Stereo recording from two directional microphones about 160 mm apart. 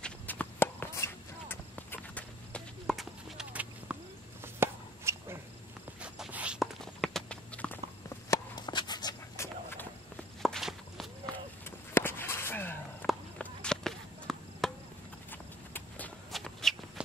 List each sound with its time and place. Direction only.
0.0 s walk: 10° left (ahead or behind); by 4.0 s 5° right (ahead or behind)
4.6 s a sound: 15° right (ahead or behind)
5.9 s walk: 5° right (ahead or behind)
8.3 s a sound: 25° left (ahead or behind)
10.4 s walk: centre (ahead or behind)
11.6 s a sound: 15° left (ahead or behind)
13.0 s walk: 10° left (ahead or behind)
13.4 s chop: 5° left (ahead or behind)
16.3 s shuffle: centre (ahead or behind)